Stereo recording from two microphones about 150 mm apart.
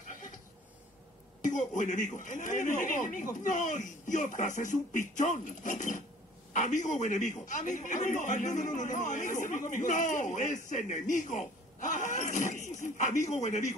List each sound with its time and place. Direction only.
1.4 s a woman's voice: 55° left (ahead or behind)